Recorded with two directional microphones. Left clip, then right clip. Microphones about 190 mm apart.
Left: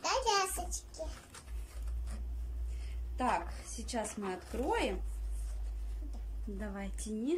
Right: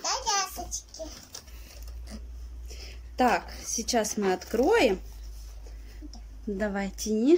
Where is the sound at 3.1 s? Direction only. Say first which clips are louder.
Right 9 dB; 60° right (ahead or behind).